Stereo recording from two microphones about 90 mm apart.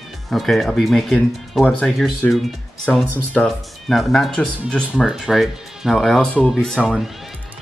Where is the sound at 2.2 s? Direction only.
10° left (ahead or behind).